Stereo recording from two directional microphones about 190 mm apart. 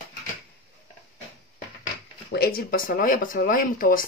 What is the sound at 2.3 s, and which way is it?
Speech, 55° left (ahead or behind).